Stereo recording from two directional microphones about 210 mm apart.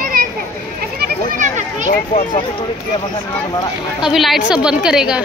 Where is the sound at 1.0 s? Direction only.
35° right (ahead or behind).